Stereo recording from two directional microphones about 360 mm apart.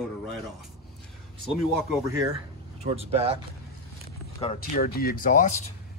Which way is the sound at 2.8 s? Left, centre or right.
Centre.